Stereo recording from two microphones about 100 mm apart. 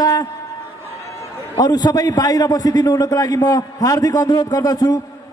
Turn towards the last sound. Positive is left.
turn(degrees=40)  # may be behind; listen again after turning